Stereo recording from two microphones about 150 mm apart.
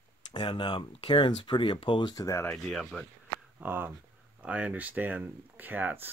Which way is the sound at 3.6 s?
15° right (ahead or behind).